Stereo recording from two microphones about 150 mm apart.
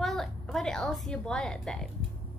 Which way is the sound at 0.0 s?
Centre (ahead or behind).